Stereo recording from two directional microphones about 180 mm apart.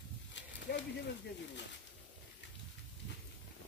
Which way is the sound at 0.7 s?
70° left (ahead or behind).